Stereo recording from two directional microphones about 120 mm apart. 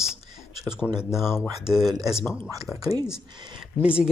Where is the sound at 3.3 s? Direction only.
40° right (ahead or behind).